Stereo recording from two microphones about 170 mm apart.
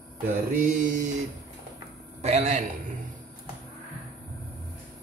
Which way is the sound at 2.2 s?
40° right (ahead or behind).